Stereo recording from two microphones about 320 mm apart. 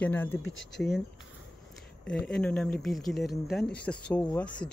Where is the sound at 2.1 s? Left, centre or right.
Centre.